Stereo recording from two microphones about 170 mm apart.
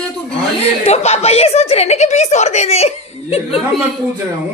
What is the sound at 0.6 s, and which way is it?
A woman's voice, 40° left (ahead or behind).